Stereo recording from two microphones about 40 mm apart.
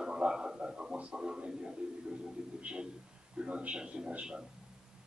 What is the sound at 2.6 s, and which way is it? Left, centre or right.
A man's voice, right.